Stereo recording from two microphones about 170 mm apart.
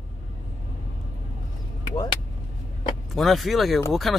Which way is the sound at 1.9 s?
25° left (ahead or behind).